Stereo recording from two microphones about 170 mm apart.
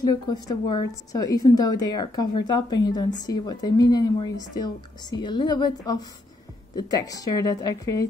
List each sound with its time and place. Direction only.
0.0 s a woman's voice: 25° left (ahead or behind)